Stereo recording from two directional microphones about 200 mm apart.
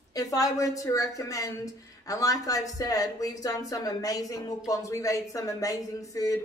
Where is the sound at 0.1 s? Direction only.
15° left (ahead or behind).